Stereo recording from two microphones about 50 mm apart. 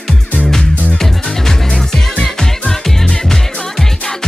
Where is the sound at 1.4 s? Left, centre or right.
Centre.